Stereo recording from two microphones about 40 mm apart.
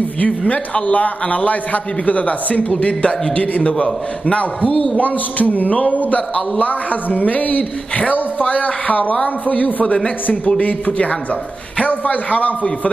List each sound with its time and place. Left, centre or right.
0.5 s a man's voice: left
4.9 s a man's voice: left
11.8 s a man's voice: left